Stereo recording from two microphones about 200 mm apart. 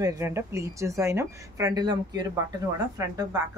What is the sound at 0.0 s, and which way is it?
Speech, 15° right (ahead or behind).